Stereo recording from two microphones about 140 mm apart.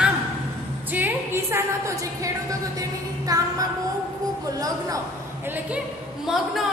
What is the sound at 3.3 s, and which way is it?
Music, 25° right (ahead or behind).